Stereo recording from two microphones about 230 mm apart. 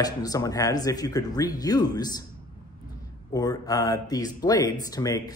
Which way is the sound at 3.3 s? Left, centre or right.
Centre.